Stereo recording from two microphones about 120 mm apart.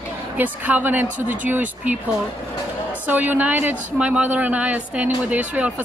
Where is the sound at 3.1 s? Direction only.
15° right (ahead or behind).